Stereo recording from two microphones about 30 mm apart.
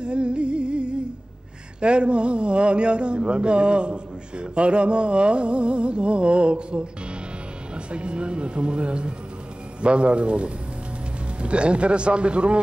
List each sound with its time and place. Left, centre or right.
0.0 s music: right
1.8 s a man's voice: right